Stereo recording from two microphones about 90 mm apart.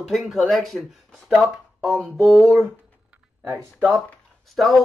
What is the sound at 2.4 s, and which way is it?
Speech, 25° right (ahead or behind).